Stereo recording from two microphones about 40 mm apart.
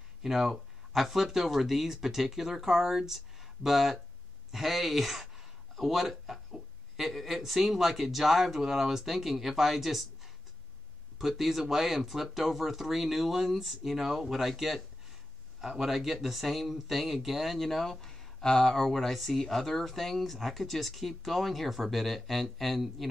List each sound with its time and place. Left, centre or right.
0.2 s speech: centre